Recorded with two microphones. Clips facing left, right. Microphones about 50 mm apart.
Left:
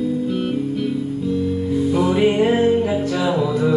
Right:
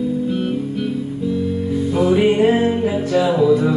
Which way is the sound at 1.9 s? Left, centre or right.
Centre.